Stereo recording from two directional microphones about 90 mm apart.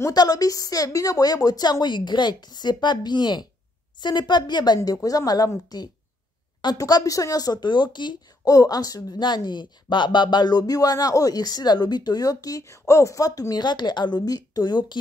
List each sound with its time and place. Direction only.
0.1 s speech: 45° left (ahead or behind)